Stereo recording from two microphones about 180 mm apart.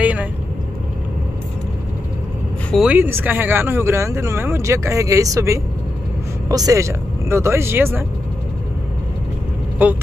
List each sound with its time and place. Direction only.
0.0 s vehicle: 10° right (ahead or behind)
2.7 s speech: 5° right (ahead or behind)
9.8 s speech: 10° right (ahead or behind)